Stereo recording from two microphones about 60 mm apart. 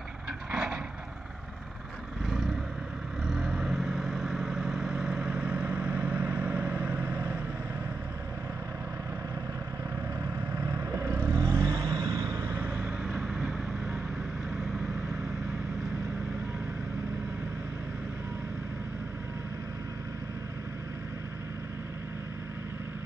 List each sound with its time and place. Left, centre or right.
0.5 s vehicle: centre
2.2 s vehicle: centre; by 7.3 s right
10.5 s vehicle: right
12.4 s vehicle: right
12.6 s vehicle: centre